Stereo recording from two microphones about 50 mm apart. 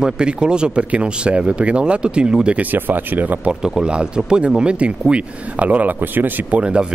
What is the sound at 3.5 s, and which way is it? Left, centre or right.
Speech, centre.